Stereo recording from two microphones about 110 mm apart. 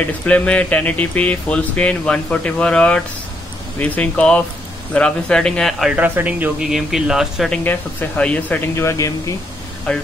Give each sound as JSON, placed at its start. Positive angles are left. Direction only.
{"t": 0.0, "sound": "speech", "side_deg": 15}
{"t": 5.9, "sound": "speech", "side_deg": -15}
{"t": 7.5, "sound": "speech", "side_deg": 15}
{"t": 9.9, "sound": "speech", "side_deg": 10}